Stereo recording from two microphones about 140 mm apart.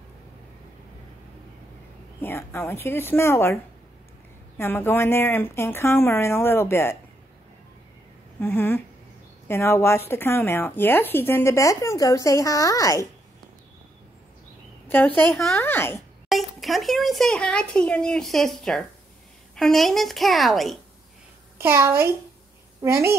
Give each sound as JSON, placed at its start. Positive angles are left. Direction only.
{"t": 2.2, "sound": "speech", "side_deg": 15}
{"t": 4.6, "sound": "speech", "side_deg": 15}
{"t": 8.4, "sound": "speech", "side_deg": 15}
{"t": 14.9, "sound": "speech", "side_deg": 15}
{"t": 16.3, "sound": "speech", "side_deg": 0}
{"t": 21.5, "sound": "a woman's voice", "side_deg": -20}